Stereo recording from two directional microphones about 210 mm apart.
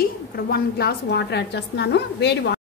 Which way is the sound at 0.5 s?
50° left (ahead or behind).